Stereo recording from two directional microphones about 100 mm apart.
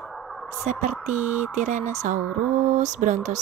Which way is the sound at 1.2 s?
15° right (ahead or behind).